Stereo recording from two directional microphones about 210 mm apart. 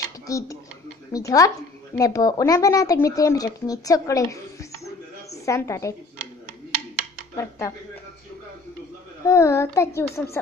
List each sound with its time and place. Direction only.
0.3 s speech: 15° left (ahead or behind)
7.3 s speech: 15° left (ahead or behind)
9.2 s speech: 15° left (ahead or behind)